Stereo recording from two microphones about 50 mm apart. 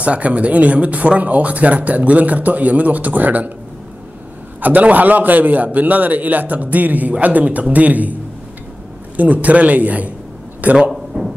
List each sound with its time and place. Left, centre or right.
0.0 s speech: right
4.6 s a man's voice: right
10.9 s a sound: centre